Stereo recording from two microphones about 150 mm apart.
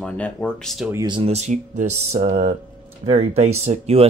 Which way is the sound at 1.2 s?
50° right (ahead or behind).